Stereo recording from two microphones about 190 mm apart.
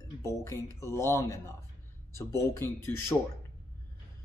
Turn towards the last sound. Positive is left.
turn(degrees=10)  # may be behind; listen again after turning